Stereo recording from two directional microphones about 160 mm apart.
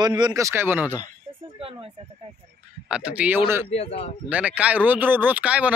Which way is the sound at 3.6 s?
40° left (ahead or behind).